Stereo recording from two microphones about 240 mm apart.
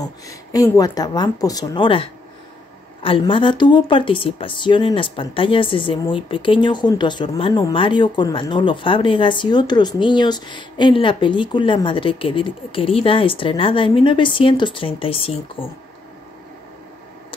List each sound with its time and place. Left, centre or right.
0.0 s speech: centre